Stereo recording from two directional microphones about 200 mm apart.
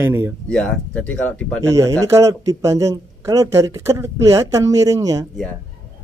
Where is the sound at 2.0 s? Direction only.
15° right (ahead or behind).